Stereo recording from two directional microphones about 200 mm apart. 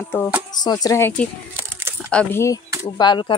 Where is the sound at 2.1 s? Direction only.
15° left (ahead or behind).